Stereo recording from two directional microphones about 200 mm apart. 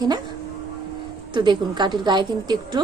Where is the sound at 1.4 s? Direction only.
20° right (ahead or behind).